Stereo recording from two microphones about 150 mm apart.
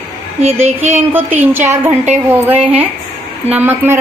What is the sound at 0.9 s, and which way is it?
A woman's voice, 10° right (ahead or behind).